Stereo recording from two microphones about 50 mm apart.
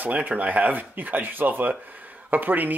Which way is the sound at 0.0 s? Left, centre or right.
Right.